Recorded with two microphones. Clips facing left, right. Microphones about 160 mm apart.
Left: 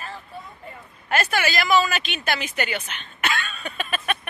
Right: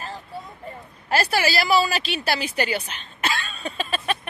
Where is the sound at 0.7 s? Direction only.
35° right (ahead or behind).